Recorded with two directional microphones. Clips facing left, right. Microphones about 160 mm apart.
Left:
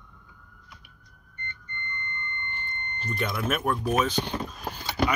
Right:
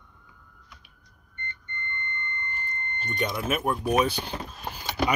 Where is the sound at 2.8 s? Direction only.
Centre (ahead or behind).